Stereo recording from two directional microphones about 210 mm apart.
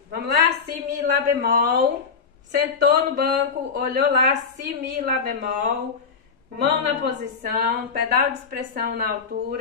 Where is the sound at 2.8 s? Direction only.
50° right (ahead or behind).